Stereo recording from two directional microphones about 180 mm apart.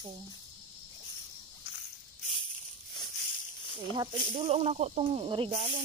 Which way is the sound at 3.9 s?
30° right (ahead or behind).